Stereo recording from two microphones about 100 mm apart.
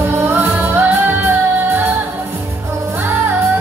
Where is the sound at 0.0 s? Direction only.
20° right (ahead or behind).